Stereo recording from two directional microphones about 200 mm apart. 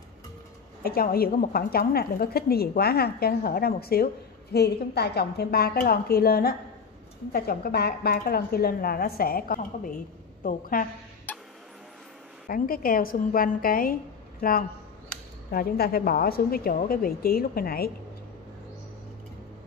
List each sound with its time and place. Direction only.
0.8 s a woman's voice: 50° left (ahead or behind)
11.3 s music: 10° left (ahead or behind)
12.4 s a woman's voice: 45° left (ahead or behind)